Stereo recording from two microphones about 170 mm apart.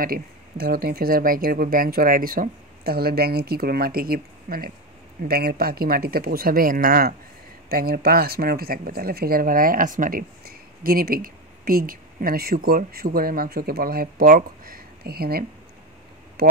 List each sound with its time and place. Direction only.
0.0 s speech: 60° right (ahead or behind)